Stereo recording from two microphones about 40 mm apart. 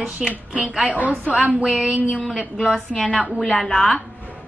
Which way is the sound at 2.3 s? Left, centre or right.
Centre.